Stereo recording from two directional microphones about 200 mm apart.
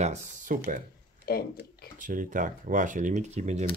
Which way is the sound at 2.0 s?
40° right (ahead or behind).